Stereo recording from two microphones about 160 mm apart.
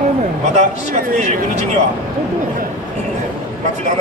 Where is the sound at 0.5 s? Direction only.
45° right (ahead or behind).